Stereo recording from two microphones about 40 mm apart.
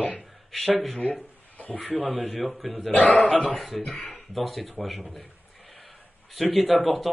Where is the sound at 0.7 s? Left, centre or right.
Centre.